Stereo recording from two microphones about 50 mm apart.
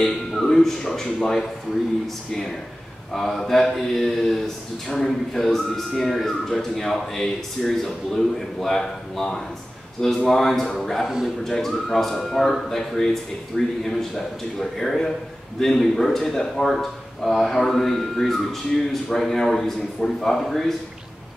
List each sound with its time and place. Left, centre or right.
0.0 s speech: centre
3.1 s speech: centre
11.1 s a man's voice: centre
11.4 s speech: centre